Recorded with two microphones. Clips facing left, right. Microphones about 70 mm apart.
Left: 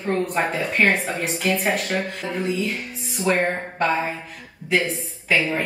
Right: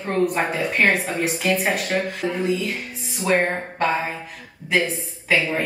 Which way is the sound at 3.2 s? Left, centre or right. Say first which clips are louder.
Right 1 dB; centre.